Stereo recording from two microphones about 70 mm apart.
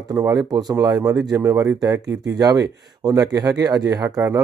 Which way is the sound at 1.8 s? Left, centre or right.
Right.